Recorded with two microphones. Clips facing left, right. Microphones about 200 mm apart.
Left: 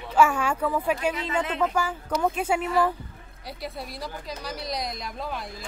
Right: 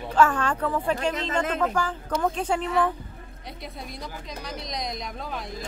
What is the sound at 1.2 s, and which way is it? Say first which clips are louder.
Speech: right 1 dB; 45° right (ahead or behind).